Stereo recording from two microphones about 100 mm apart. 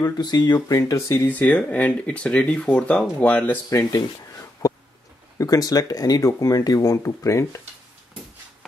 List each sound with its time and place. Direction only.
0.0 s speech: 45° left (ahead or behind); by 3.5 s 15° left (ahead or behind)
3.7 s a sound: 35° left (ahead or behind)
5.4 s speech: 35° left (ahead or behind)